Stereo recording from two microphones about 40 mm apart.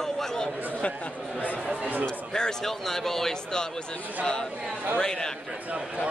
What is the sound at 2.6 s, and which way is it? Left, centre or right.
A man's voice, centre.